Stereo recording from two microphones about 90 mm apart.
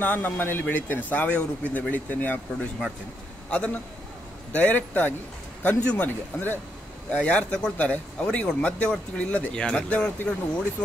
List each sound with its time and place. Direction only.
0.0 s a man's voice: 20° left (ahead or behind)